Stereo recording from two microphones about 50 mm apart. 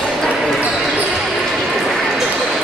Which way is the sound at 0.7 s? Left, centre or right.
Centre.